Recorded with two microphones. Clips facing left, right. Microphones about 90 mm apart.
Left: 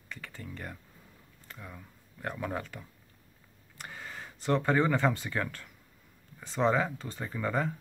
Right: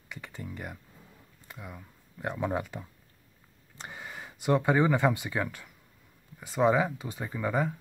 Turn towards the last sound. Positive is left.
turn(degrees=-10)  # may be behind; listen again after turning